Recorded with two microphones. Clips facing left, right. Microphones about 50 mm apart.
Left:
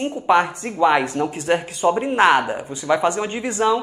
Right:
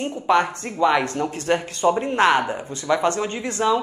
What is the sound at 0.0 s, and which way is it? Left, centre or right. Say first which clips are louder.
Speech: left 2 dB; centre.